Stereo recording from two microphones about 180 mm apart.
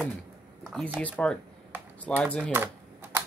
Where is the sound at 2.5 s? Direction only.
10° right (ahead or behind).